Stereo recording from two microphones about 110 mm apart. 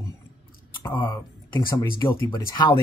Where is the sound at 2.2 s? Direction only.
40° left (ahead or behind).